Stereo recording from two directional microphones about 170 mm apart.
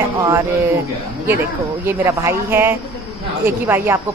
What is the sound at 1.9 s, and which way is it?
Speech, 15° right (ahead or behind).